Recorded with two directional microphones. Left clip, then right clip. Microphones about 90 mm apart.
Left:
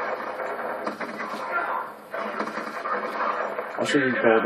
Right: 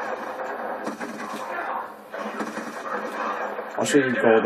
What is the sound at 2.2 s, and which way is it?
Television, centre (ahead or behind).